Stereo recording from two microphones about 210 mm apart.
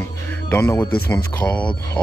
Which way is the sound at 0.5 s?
10° left (ahead or behind).